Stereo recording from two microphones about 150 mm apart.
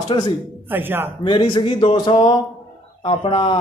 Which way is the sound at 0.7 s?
15° right (ahead or behind).